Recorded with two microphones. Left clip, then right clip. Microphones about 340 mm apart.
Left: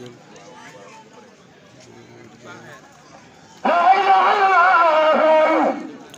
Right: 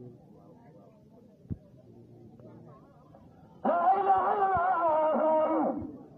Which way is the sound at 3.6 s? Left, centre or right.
Right.